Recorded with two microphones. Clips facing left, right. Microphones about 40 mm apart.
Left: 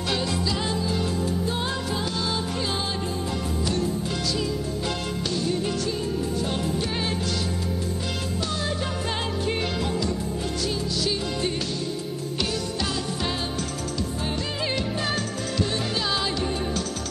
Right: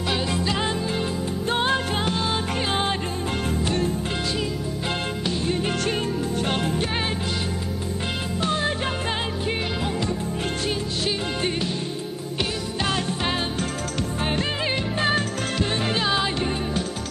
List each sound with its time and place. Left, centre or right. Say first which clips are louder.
0.3 s music: right 2 dB; right
4.8 s music: right 2 dB; right
6.4 s music: right 2 dB; right
8.4 s music: right 6 dB; right
9.1 s music: right 1 dB; centre
10.7 s music: right 1 dB; right
12.8 s music: right 7 dB; right
14.6 s music: right 3 dB; right